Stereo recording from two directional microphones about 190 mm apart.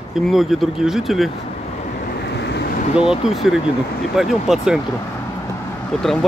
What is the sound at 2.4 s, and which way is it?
Vehicle, 60° left (ahead or behind).